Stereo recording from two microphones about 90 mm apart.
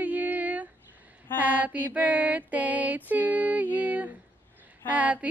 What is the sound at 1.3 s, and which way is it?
Mantra, 20° right (ahead or behind).